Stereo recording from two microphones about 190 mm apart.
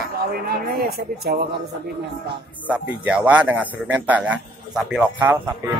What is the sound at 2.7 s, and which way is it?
A man's voice, 5° right (ahead or behind).